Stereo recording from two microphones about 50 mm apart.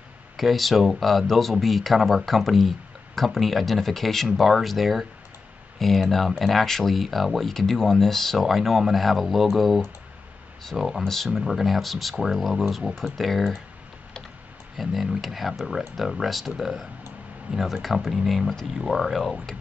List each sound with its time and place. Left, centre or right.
0.4 s speech: centre
14.8 s speech: centre
17.5 s speech: right
17.8 s speech: centre